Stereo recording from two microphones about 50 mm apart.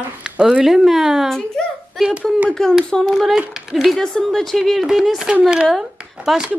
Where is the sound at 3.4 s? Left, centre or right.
Centre.